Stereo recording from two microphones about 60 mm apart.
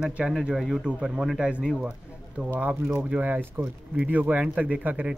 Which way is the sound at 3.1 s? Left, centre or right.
Right.